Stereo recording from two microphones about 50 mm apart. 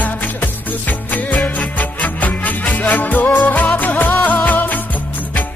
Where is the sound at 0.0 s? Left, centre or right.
Left.